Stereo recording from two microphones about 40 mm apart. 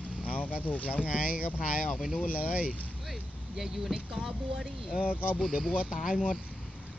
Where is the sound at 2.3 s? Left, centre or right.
Right.